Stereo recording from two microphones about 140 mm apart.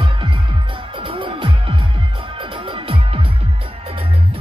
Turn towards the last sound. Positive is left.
turn(degrees=-40)  # may be behind; listen again after turning